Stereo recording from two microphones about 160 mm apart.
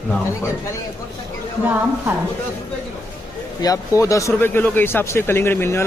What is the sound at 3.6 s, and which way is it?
A man's voice, 20° left (ahead or behind).